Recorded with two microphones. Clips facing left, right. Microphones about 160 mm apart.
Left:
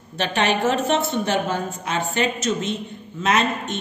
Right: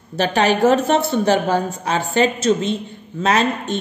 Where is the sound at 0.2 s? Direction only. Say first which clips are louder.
Right 5 dB; 40° right (ahead or behind).